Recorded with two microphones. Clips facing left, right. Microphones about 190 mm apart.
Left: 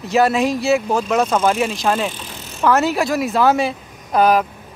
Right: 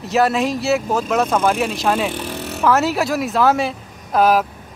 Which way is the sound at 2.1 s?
65° right (ahead or behind).